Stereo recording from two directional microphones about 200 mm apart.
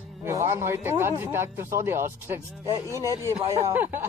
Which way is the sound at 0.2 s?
15° right (ahead or behind).